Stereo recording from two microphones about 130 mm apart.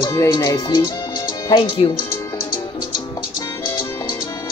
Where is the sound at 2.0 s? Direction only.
20° left (ahead or behind).